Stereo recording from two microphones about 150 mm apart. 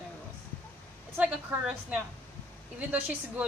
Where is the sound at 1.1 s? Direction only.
10° right (ahead or behind).